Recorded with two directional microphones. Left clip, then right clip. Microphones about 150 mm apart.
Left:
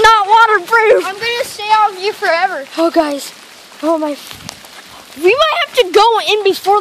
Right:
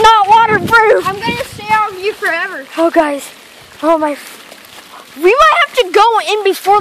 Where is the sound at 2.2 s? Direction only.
55° left (ahead or behind).